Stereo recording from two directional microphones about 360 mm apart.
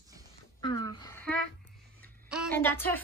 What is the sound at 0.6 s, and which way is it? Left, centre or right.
A woman's voice, centre.